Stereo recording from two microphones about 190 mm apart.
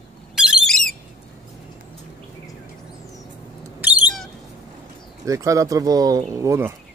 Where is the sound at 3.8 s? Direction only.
Centre (ahead or behind).